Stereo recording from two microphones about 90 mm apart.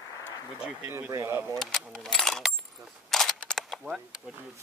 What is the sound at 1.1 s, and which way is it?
Speech, 35° right (ahead or behind).